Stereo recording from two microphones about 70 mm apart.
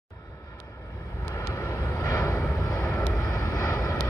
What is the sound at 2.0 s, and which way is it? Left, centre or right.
Vehicle, left.